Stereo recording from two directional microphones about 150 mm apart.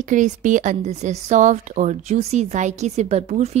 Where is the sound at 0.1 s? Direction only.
60° right (ahead or behind).